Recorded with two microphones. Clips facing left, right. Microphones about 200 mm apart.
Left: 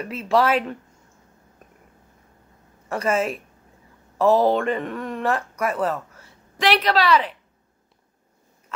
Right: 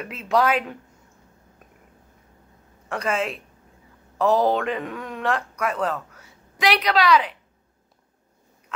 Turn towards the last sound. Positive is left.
turn(degrees=0)  # may be behind; listen again after turning